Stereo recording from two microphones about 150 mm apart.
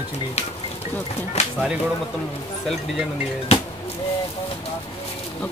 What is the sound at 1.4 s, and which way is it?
Speech, 45° left (ahead or behind).